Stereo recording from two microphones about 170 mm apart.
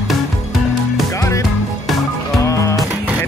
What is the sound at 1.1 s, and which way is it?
Music, 20° left (ahead or behind).